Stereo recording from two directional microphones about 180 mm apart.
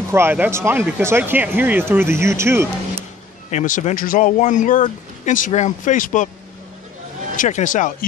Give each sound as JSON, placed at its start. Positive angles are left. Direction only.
{"t": 0.1, "sound": "speech", "side_deg": -10}
{"t": 3.4, "sound": "speech", "side_deg": 45}
{"t": 7.3, "sound": "speech", "side_deg": 45}